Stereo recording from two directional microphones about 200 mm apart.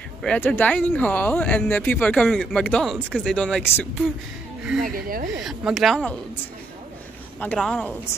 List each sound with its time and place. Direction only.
0.2 s speech: 5° left (ahead or behind)
4.8 s speech: 45° right (ahead or behind)
5.4 s speech: centre (ahead or behind)
7.3 s speech: 5° left (ahead or behind)